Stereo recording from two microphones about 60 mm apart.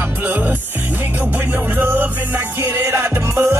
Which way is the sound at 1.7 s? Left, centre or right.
Right.